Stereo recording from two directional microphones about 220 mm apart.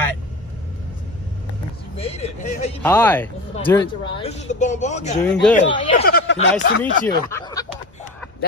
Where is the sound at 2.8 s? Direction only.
10° left (ahead or behind).